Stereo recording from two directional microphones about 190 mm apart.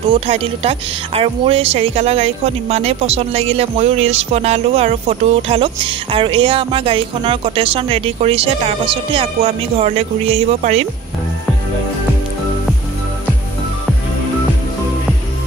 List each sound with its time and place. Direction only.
0.1 s speech: 30° right (ahead or behind)